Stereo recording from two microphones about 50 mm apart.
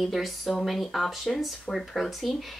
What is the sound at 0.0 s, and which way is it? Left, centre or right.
Speech, centre.